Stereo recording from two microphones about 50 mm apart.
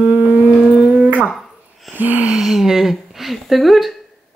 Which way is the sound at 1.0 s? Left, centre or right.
Right.